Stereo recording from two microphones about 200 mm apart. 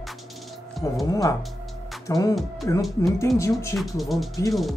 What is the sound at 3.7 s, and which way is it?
Speech, centre (ahead or behind).